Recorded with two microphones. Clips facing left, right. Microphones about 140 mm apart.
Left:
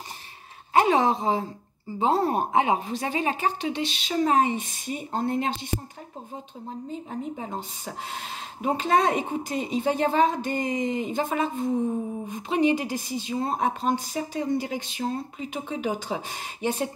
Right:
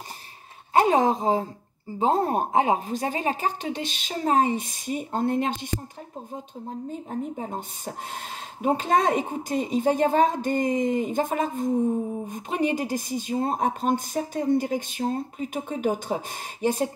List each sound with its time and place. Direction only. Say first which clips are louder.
0.7 s a sound: right 1 dB; 45° right (ahead or behind)
2.0 s speech: even; 45° right (ahead or behind)
6.9 s speech: right 1 dB; 45° right (ahead or behind)